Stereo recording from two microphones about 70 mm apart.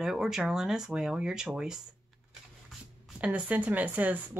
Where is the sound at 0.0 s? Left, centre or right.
Centre.